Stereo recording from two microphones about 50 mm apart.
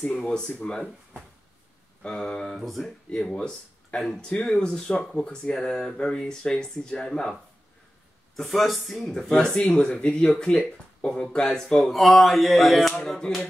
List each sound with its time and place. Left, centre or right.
0.0 s speech: centre
2.0 s speech: centre
2.5 s speech: centre
3.1 s speech: centre
8.5 s speech: centre
9.5 s speech: left
9.8 s speech: centre